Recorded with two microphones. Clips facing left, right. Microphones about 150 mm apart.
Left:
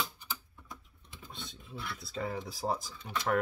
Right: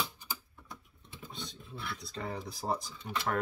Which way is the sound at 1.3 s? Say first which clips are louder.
Even; centre (ahead or behind).